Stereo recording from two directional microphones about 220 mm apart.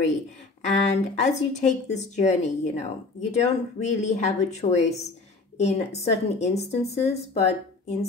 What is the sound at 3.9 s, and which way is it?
A woman's voice, 30° left (ahead or behind).